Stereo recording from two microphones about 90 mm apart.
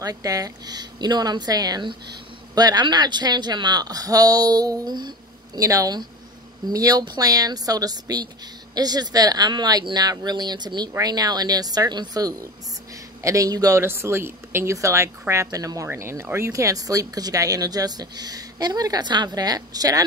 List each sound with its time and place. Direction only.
0.0 s speech: 40° right (ahead or behind)
5.6 s speech: 40° right (ahead or behind)
13.7 s speech: 30° right (ahead or behind); by 20.0 s 45° right (ahead or behind)